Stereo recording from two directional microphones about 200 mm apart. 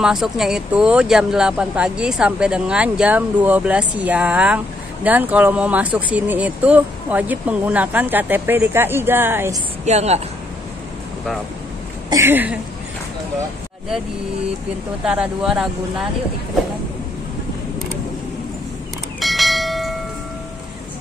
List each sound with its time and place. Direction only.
0.0 s speech: centre (ahead or behind)
9.8 s speech: 35° right (ahead or behind)
12.1 s speech: 10° right (ahead or behind)
15.0 s speech: 5° right (ahead or behind)
19.1 s church bell: centre (ahead or behind)